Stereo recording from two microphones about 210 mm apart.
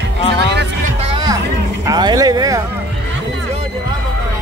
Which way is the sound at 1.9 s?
20° right (ahead or behind).